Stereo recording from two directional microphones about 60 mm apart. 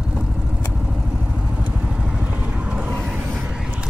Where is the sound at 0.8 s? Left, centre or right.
Centre.